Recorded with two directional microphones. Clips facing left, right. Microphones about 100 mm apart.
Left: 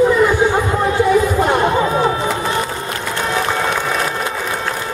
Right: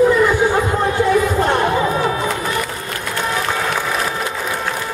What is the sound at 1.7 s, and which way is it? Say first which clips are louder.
Music: left 2 dB; 25° left (ahead or behind).